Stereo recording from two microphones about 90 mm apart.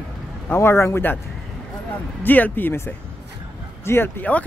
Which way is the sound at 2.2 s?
20° left (ahead or behind).